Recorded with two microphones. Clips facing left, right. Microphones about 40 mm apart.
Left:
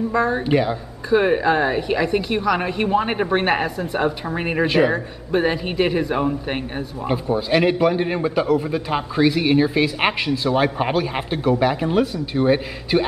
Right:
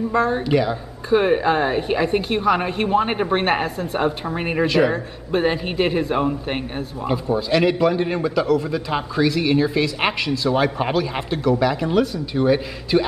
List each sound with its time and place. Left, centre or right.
0.4 s speech: centre
1.1 s a man's voice: centre
2.6 s a man's voice: centre
4.6 s speech: centre
5.3 s a man's voice: centre
7.1 s speech: centre